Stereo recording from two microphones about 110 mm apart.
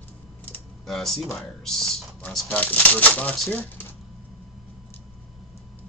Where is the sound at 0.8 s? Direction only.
5° left (ahead or behind).